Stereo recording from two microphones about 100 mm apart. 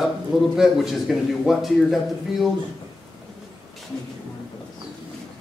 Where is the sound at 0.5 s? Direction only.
5° right (ahead or behind).